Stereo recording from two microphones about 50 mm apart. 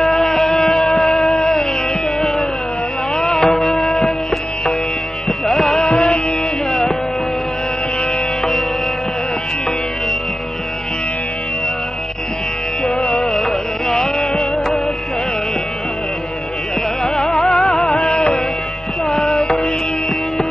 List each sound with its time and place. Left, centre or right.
0.0 s music: centre
3.8 s music: centre
5.5 s music: centre
5.9 s music: left
6.7 s music: centre
13.2 s carnatic music: centre
17.0 s music: centre
19.2 s music: centre